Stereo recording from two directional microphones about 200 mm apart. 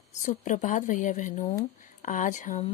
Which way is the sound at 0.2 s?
40° left (ahead or behind).